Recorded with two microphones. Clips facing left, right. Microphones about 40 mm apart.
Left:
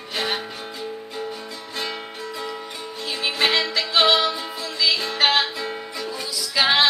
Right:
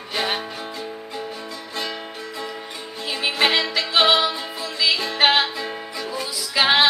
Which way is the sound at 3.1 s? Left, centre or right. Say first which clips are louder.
Right 1 dB; centre.